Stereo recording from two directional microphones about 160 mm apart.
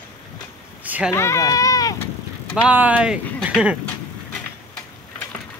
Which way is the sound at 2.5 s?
10° right (ahead or behind).